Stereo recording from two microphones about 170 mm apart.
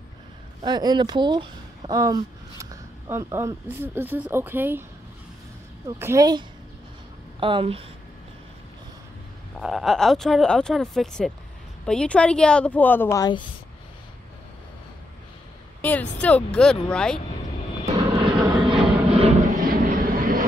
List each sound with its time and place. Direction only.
0.7 s speech: 25° right (ahead or behind)
5.9 s a woman's voice: 15° right (ahead or behind); by 7.8 s 30° right (ahead or behind)
9.6 s speech: centre (ahead or behind); by 13.4 s 20° left (ahead or behind)
15.8 s speech: 10° left (ahead or behind)
18.4 s vehicle: 30° right (ahead or behind)
19.5 s vehicle: 55° right (ahead or behind)